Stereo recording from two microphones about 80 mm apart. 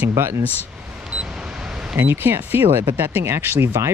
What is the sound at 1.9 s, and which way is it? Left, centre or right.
Speech, right.